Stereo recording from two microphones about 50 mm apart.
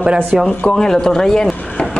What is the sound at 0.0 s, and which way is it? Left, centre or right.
Speech, centre.